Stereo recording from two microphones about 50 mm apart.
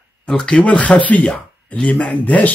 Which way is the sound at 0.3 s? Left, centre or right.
Centre.